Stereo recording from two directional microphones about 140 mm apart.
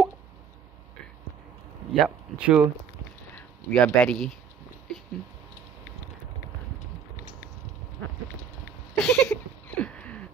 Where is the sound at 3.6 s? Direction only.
10° left (ahead or behind).